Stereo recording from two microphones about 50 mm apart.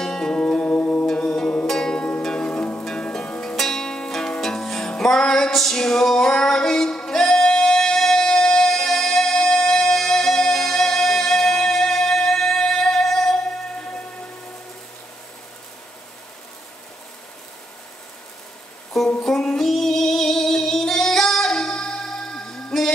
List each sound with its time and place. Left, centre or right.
0.0 s music: centre
0.7 s music: left
1.0 s music: centre
2.0 s music: left
3.5 s music: centre
19.2 s music: centre
19.7 s female singing: centre